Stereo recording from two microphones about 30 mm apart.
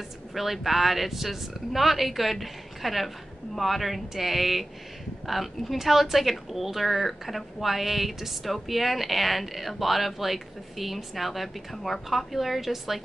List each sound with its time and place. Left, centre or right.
0.3 s a woman's voice: centre